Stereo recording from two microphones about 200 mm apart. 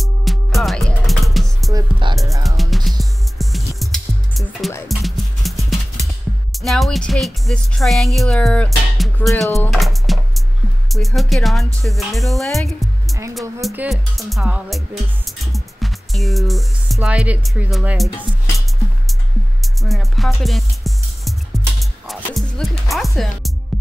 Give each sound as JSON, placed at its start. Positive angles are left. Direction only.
{"t": 0.0, "sound": "music", "side_deg": 0}
{"t": 1.7, "sound": "music", "side_deg": -20}
{"t": 2.4, "sound": "music", "side_deg": 0}
{"t": 10.9, "sound": "speech", "side_deg": 0}
{"t": 19.6, "sound": "music", "side_deg": 0}